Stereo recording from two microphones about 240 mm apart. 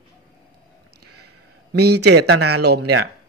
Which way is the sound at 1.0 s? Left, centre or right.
Right.